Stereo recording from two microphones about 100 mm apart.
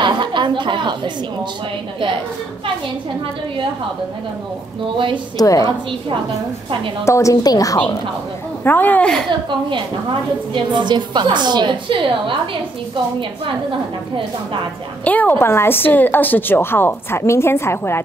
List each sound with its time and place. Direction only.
0.0 s a woman's voice: 50° right (ahead or behind)
4.9 s a woman's voice: 55° right (ahead or behind)
5.4 s a woman's voice: 35° left (ahead or behind)
7.1 s a woman's voice: 30° left (ahead or behind)
8.6 s speech: 20° left (ahead or behind)
9.5 s a woman's voice: 55° right (ahead or behind)
15.0 s a woman's voice: 15° left (ahead or behind)